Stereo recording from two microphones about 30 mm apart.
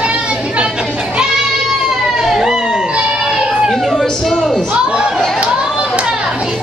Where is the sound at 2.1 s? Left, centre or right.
Centre.